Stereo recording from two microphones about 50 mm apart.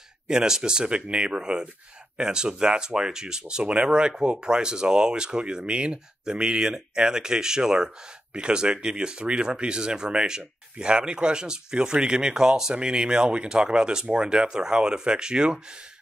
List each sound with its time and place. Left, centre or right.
0.3 s speech: centre